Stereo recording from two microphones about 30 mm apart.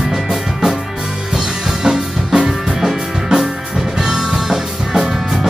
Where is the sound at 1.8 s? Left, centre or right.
Centre.